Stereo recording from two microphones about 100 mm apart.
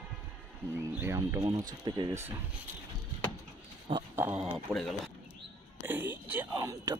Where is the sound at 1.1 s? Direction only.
30° right (ahead or behind).